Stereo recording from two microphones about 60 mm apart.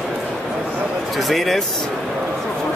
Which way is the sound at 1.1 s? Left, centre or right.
Centre.